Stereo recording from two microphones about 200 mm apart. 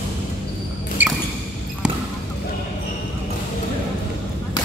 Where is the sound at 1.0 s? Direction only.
10° right (ahead or behind).